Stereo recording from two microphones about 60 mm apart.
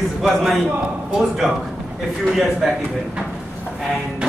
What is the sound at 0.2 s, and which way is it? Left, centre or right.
Speech, centre.